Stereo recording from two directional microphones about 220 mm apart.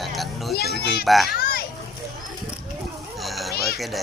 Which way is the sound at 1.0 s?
Centre (ahead or behind).